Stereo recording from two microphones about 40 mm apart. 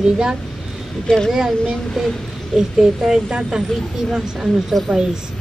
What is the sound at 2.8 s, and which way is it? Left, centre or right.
Speech, centre.